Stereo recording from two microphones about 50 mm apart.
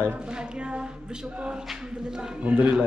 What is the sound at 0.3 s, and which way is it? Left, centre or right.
A man's voice, centre.